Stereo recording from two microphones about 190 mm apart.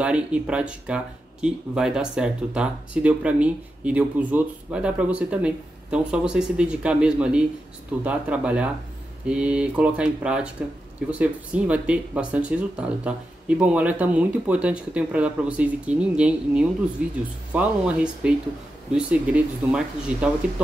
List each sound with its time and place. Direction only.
0.0 s speech: 5° right (ahead or behind)